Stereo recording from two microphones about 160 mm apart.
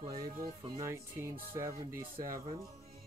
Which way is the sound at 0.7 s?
20° right (ahead or behind).